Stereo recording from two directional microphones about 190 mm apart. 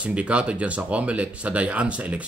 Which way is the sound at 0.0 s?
5° right (ahead or behind).